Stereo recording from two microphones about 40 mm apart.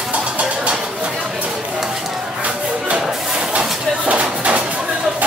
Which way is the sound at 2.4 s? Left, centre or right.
Right.